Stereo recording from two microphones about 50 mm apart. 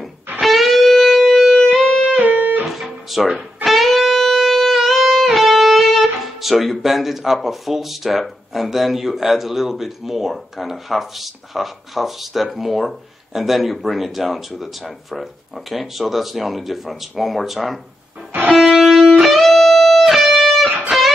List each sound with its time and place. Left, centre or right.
0.4 s music: centre
2.0 s music: right
2.6 s guitar: centre
3.6 s music: centre